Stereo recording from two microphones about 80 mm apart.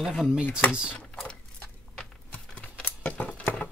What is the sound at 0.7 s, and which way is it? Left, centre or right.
Speech, centre.